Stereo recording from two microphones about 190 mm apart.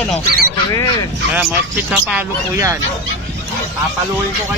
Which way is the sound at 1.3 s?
5° right (ahead or behind).